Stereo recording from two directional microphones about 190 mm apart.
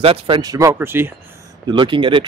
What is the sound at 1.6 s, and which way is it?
Speech, 25° right (ahead or behind).